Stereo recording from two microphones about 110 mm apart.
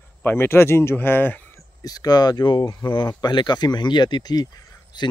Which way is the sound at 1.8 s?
35° left (ahead or behind).